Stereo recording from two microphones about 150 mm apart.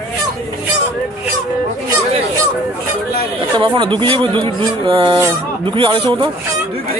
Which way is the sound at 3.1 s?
35° right (ahead or behind).